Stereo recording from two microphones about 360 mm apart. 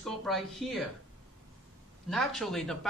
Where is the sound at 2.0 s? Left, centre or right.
Centre.